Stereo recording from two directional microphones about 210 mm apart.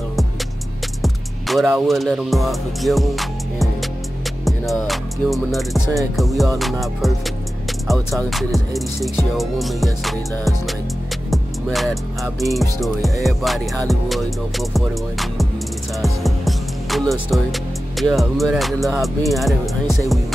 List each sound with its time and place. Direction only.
1.0 s music: centre (ahead or behind)
8.3 s music: centre (ahead or behind)